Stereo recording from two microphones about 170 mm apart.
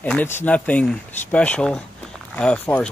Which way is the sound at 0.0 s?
10° left (ahead or behind).